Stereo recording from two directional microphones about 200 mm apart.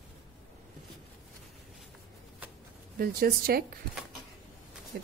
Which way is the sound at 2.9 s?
50° right (ahead or behind).